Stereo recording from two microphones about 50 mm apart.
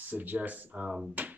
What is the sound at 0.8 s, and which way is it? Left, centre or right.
Speech, centre.